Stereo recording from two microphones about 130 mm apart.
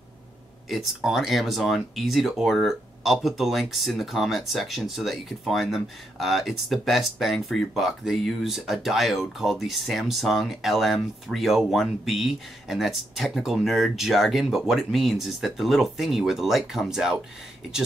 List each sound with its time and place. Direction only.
0.7 s speech: centre (ahead or behind)